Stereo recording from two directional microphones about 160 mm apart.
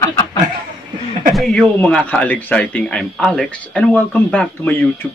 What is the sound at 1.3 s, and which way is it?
Speech, centre (ahead or behind).